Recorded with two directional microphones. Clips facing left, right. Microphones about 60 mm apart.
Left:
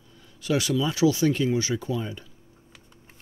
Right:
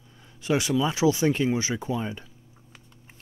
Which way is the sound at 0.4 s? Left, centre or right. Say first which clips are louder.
Right 1 dB; right.